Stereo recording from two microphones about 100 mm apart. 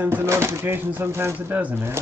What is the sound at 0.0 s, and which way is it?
Speech, 25° right (ahead or behind).